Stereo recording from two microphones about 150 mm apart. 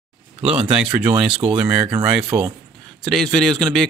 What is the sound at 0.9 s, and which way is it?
Speech, 10° right (ahead or behind).